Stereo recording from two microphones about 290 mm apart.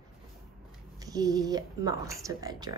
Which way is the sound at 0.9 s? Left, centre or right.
Centre.